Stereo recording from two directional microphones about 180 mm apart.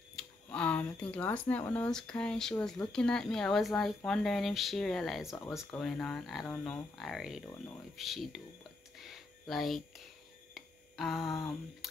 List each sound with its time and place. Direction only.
0.1 s speech: 10° left (ahead or behind)
8.9 s a sound: centre (ahead or behind)
11.8 s music: centre (ahead or behind)